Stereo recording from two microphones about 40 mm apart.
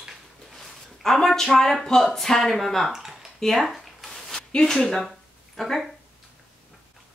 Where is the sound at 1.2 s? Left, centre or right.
Centre.